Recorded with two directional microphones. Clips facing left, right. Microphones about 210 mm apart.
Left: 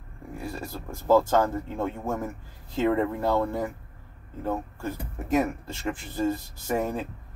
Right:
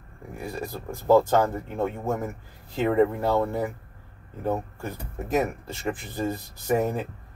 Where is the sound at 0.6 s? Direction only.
15° right (ahead or behind).